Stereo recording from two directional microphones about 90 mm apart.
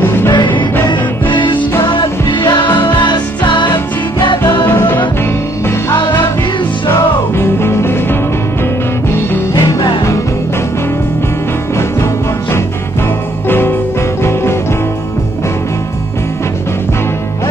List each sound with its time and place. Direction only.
0.0 s music: 25° left (ahead or behind)
1.3 s music: 65° left (ahead or behind)
4.6 s music: 25° left (ahead or behind)
5.9 s music: 65° left (ahead or behind)
7.3 s music: 25° left (ahead or behind)
9.6 s music: 50° left (ahead or behind)
13.5 s music: 25° left (ahead or behind)